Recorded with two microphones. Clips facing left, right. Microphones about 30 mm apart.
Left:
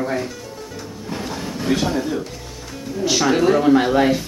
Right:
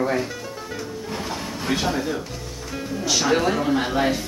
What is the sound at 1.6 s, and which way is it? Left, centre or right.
Speech, centre.